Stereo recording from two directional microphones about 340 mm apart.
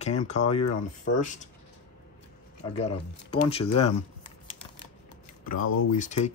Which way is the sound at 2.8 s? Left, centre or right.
Centre.